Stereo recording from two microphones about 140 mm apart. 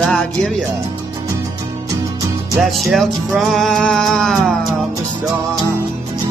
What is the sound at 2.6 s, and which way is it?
Music, centre (ahead or behind).